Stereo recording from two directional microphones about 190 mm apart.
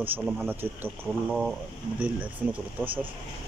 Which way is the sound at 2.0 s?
10° right (ahead or behind).